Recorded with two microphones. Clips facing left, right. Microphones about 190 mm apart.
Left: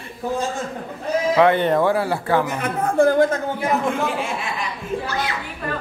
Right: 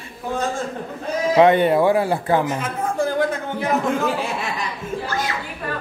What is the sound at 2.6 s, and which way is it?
Speech, 55° left (ahead or behind).